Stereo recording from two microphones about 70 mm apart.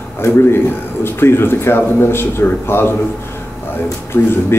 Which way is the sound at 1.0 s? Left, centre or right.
Left.